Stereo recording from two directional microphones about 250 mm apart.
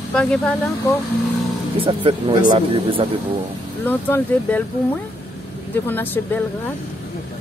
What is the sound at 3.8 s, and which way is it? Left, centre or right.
Speech, centre.